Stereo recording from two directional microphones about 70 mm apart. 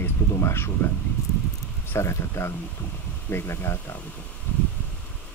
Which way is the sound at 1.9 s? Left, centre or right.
Left.